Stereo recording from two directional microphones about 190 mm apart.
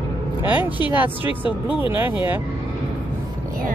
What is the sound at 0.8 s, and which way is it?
Speech, 30° left (ahead or behind).